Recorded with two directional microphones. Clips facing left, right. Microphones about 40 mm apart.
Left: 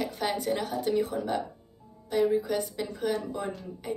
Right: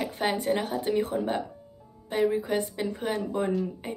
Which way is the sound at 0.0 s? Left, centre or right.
Right.